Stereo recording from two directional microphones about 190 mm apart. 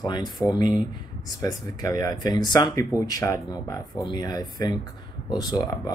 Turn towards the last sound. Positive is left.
turn(degrees=20)  # may be behind; listen again after turning